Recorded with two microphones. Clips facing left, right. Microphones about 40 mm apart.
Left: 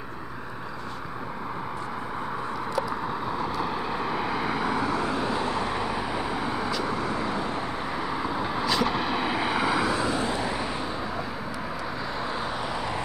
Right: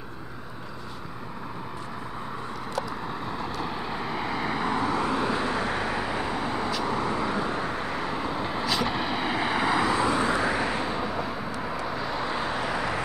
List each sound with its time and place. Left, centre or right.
3.3 s vehicle: centre
5.9 s vehicle: centre
10.0 s vehicle: right
10.7 s vehicle: centre